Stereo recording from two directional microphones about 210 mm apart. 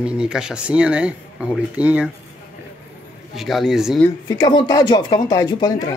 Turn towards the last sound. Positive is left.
turn(degrees=20)  # may be behind; listen again after turning